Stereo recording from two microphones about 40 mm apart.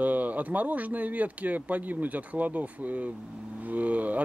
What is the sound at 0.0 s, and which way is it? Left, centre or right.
Speech, right.